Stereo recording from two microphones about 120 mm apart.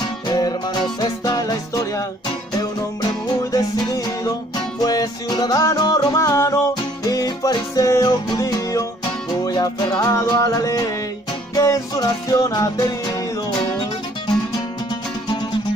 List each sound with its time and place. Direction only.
0.0 s music: 35° left (ahead or behind)
3.5 s music: 30° left (ahead or behind)
10.0 s music: 25° left (ahead or behind)